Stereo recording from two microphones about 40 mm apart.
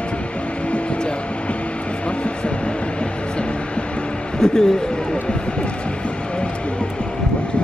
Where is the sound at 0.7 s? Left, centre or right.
Left.